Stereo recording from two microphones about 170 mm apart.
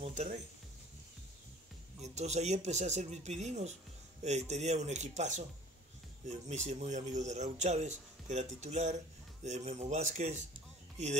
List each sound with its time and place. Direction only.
0.0 s speech: 40° right (ahead or behind)
2.1 s speech: 40° right (ahead or behind)